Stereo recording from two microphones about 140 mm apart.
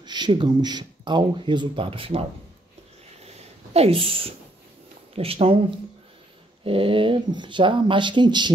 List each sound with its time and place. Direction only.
0.0 s speech: 30° right (ahead or behind)
3.3 s a sound: 45° right (ahead or behind)
5.1 s speech: 45° right (ahead or behind)
6.6 s speech: 40° right (ahead or behind)